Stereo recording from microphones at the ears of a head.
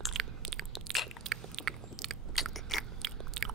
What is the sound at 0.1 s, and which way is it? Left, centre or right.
Biting, right.